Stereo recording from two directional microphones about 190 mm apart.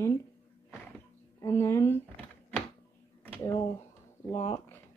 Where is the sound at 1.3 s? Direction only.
15° left (ahead or behind).